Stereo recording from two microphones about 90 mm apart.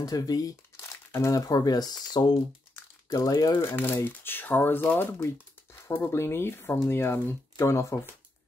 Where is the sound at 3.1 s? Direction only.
35° left (ahead or behind).